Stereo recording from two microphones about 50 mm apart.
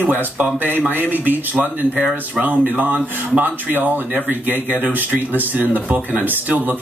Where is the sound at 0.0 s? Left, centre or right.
Right.